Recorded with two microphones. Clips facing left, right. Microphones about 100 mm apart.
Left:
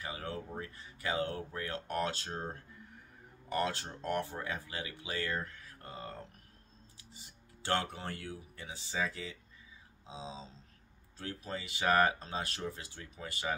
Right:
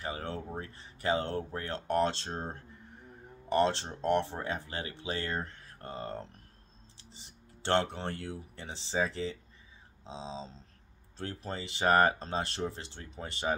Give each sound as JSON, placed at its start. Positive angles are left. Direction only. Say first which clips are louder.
{"t": 0.0, "sound": "speech", "louder": "right 3 dB", "side_deg": -30}
{"t": 7.6, "sound": "speech", "louder": "right 5 dB", "side_deg": -30}